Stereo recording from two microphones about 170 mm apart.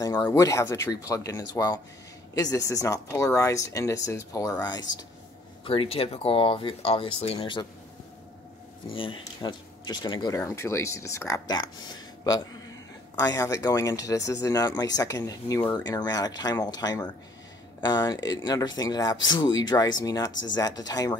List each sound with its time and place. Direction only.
0.0 s speech: 20° left (ahead or behind)
8.8 s speech: 30° left (ahead or behind)